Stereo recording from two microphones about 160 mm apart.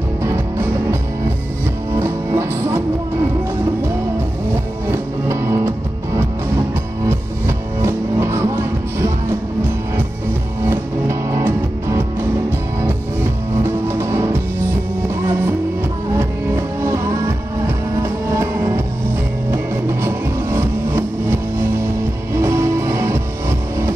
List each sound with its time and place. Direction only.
0.2 s music: 15° right (ahead or behind)
2.0 s music: 15° right (ahead or behind)
4.9 s music: 15° right (ahead or behind)
7.1 s music: 15° right (ahead or behind)
10.7 s music: 15° right (ahead or behind)
13.8 s music: 15° right (ahead or behind)
16.2 s music: 15° right (ahead or behind)
22.4 s music: 15° right (ahead or behind)